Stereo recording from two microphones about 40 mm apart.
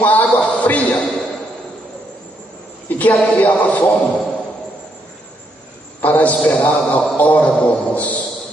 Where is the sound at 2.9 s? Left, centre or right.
Left.